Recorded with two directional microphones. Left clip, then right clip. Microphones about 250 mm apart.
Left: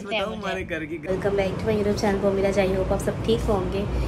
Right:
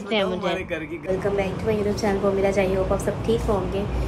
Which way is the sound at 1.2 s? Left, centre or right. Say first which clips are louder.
Left 2 dB; centre.